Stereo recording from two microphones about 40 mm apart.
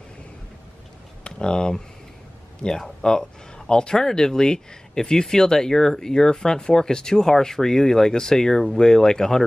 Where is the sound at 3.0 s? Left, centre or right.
Centre.